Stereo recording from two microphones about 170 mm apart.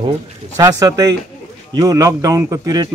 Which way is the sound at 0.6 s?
20° right (ahead or behind).